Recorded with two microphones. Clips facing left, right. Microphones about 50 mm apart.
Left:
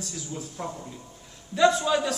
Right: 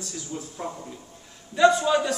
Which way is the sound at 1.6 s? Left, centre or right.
Centre.